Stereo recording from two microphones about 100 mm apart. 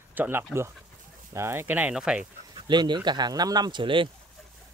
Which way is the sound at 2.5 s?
50° right (ahead or behind).